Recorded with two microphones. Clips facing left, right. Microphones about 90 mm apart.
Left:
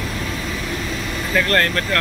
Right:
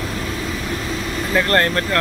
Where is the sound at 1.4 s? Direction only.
25° right (ahead or behind).